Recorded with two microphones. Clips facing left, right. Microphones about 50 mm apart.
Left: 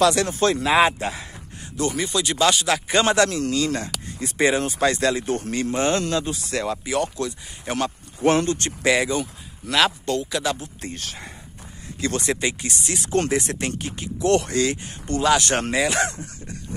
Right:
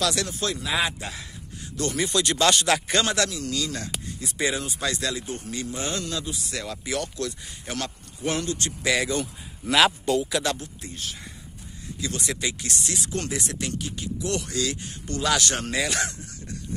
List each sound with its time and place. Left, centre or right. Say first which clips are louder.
0.0 s speech: left 8 dB; left
2.0 s speech: even; centre
3.0 s speech: left 6 dB; left
5.2 s speech: left 9 dB; left
5.5 s speech: left 8 dB; left
7.0 s speech: left 5 dB; left
8.2 s speech: left 8 dB; left
8.8 s speech: left 5 dB; left
9.7 s speech: even; centre
10.8 s speech: left 3 dB; left
12.0 s speech: left 6 dB; left
12.9 s speech: left 11 dB; left
15.7 s speech: left 6 dB; left
16.1 s speech: left 4 dB; left